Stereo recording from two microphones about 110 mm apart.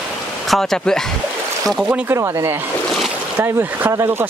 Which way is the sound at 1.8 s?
15° right (ahead or behind).